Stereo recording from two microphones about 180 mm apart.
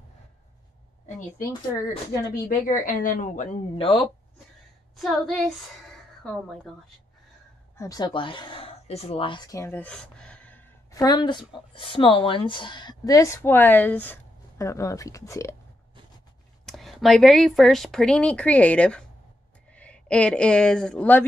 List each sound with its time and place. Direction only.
2.4 s a woman's voice: 50° left (ahead or behind)
3.7 s speech: 30° left (ahead or behind)
4.9 s speech: centre (ahead or behind)
7.7 s speech: 20° left (ahead or behind)
11.0 s speech: 20° left (ahead or behind)
16.6 s speech: centre (ahead or behind)